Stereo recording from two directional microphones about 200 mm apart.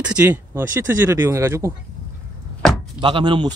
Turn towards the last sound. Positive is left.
turn(degrees=-25)  # may be behind; listen again after turning